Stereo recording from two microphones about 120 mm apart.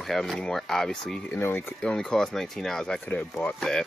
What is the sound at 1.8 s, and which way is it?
Speech, 5° left (ahead or behind).